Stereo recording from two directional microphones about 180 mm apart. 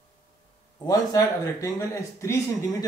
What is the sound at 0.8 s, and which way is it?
Speech, 20° left (ahead or behind).